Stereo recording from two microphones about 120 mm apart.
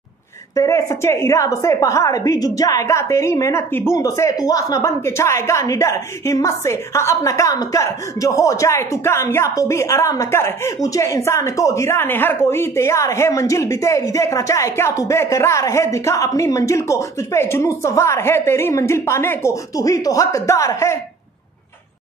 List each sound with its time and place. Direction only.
0.6 s a woman's voice: 25° left (ahead or behind)